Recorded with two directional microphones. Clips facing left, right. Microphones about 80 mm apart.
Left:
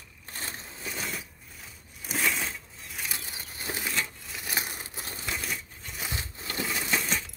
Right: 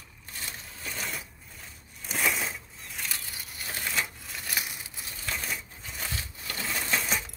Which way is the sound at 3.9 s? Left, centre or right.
Centre.